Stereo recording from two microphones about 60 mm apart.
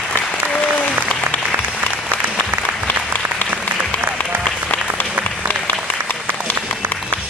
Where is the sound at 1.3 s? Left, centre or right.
Centre.